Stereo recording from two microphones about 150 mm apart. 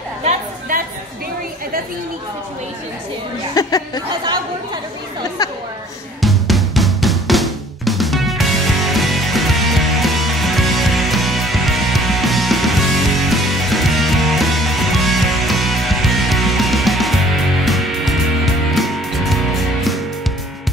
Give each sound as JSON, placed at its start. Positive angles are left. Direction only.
{"t": 0.2, "sound": "chatter", "side_deg": -60}
{"t": 3.5, "sound": "speech", "side_deg": 25}
{"t": 5.4, "sound": "a sound", "side_deg": 25}
{"t": 6.2, "sound": "drum", "side_deg": 0}
{"t": 17.6, "sound": "music", "side_deg": 0}